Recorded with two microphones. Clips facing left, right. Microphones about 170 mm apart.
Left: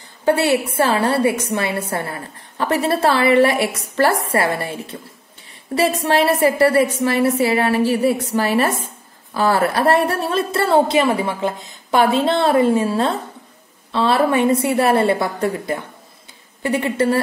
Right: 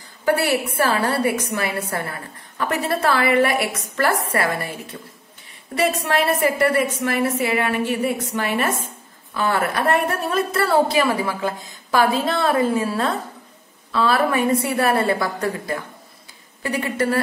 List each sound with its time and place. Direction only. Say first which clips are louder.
0.2 s a woman's voice: left 3 dB; 25° left (ahead or behind)